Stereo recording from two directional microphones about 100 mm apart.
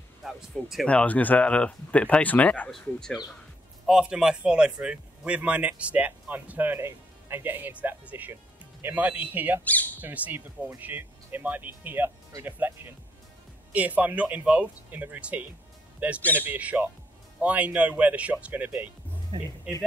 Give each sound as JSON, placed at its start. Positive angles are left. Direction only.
{"t": 0.2, "sound": "speech", "side_deg": 0}
{"t": 0.8, "sound": "speech", "side_deg": 15}
{"t": 2.7, "sound": "speech", "side_deg": 5}
{"t": 3.8, "sound": "speech", "side_deg": -5}
{"t": 19.3, "sound": "speech", "side_deg": -50}